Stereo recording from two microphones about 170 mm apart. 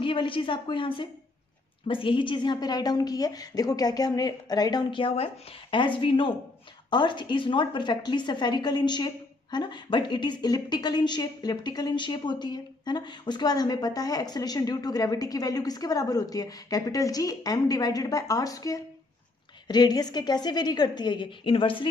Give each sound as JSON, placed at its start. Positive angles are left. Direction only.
{"t": 0.0, "sound": "a woman's voice", "side_deg": 30}